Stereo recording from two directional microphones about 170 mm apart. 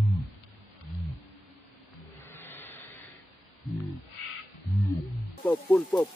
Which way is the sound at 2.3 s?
10° left (ahead or behind).